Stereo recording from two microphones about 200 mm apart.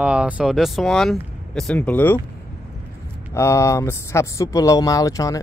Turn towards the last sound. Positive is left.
turn(degrees=15)  # may be behind; listen again after turning